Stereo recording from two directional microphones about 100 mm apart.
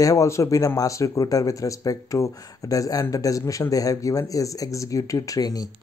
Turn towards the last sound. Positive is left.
turn(degrees=40)  # may be behind; listen again after turning